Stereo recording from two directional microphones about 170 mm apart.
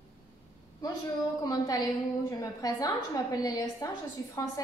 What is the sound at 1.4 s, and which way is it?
A woman's voice, 20° left (ahead or behind).